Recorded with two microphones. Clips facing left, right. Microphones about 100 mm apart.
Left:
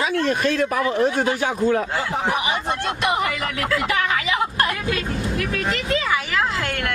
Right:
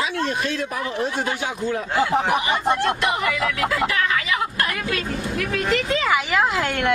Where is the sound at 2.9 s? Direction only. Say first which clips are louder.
Even; 20° left (ahead or behind).